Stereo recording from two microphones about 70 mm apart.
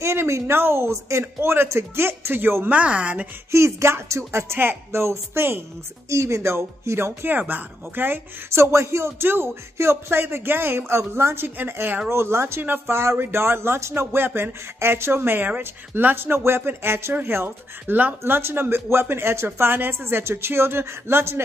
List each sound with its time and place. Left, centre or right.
0.0 s speech: right
2.8 s speech: centre
3.5 s speech: right